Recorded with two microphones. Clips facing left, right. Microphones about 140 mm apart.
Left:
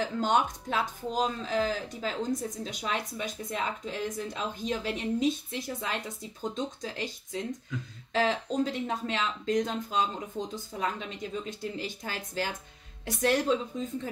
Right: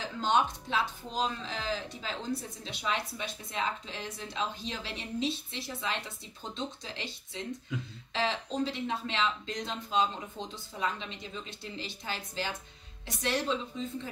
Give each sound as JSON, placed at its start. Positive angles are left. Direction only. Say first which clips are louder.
{"t": 0.0, "sound": "speech", "louder": "left 2 dB", "side_deg": 45}